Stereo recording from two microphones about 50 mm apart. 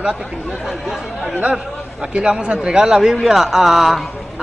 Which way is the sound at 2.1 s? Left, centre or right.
Right.